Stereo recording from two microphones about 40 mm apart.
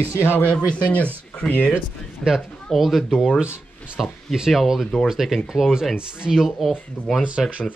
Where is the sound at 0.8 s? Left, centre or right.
Left.